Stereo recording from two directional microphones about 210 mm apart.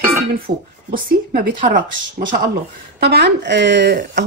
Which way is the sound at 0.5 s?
35° right (ahead or behind).